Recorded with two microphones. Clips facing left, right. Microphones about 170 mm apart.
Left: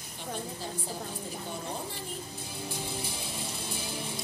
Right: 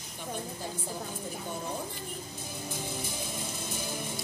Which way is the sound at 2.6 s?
50° right (ahead or behind).